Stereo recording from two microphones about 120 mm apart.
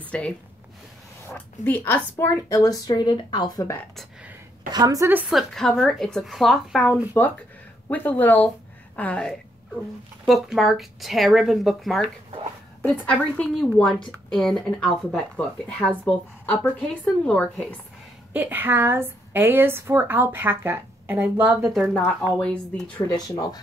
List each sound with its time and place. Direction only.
0.0 s a sound: 10° left (ahead or behind)
1.3 s a woman's voice: 15° left (ahead or behind)
2.5 s speech: 30° left (ahead or behind)
4.6 s a woman's voice: 30° right (ahead or behind)
5.3 s a woman's voice: 5° left (ahead or behind)
10.2 s speech: 5° right (ahead or behind)
13.0 s a woman's voice: 10° left (ahead or behind)
18.3 s a woman's voice: 15° right (ahead or behind)
21.9 s a woman's voice: 5° left (ahead or behind)
23.0 s speech: 30° left (ahead or behind)